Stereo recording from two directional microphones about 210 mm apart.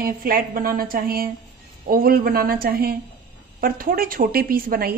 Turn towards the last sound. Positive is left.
turn(degrees=-45)  # may be behind; listen again after turning